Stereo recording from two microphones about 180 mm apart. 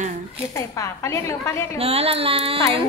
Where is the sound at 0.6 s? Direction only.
15° left (ahead or behind).